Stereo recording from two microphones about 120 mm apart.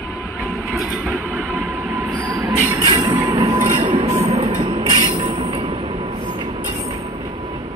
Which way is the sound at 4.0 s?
60° right (ahead or behind).